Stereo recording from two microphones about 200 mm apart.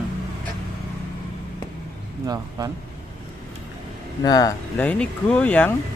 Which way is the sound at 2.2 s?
20° right (ahead or behind).